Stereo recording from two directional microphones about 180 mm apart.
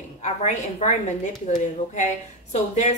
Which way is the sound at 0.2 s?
40° left (ahead or behind).